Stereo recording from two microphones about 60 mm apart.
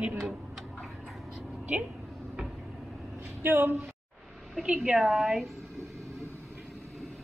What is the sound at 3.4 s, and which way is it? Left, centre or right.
Speech, right.